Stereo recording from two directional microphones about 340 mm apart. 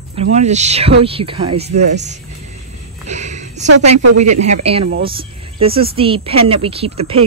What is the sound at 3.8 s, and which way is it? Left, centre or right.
Speech, right.